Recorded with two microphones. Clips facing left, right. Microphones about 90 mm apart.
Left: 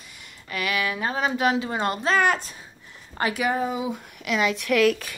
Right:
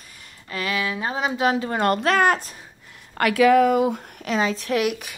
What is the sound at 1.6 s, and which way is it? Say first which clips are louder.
Speech: right 4 dB; 50° right (ahead or behind).